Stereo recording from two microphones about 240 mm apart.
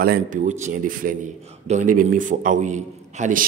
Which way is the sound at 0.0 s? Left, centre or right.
Right.